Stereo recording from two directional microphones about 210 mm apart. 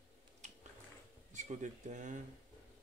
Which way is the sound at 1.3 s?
35° right (ahead or behind).